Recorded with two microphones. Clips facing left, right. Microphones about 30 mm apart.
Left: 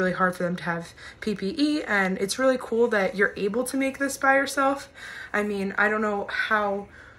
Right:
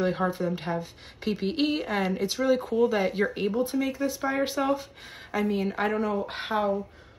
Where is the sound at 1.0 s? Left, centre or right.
Centre.